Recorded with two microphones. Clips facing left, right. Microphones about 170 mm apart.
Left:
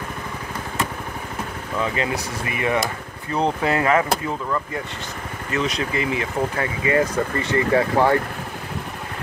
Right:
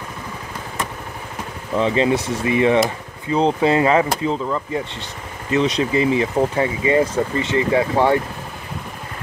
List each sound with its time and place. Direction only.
1.8 s speech: 25° right (ahead or behind)